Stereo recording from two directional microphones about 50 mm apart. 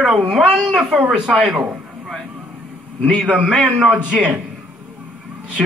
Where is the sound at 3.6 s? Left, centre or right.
Right.